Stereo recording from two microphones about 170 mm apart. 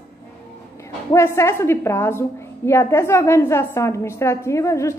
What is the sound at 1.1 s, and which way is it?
A woman's voice, 15° left (ahead or behind).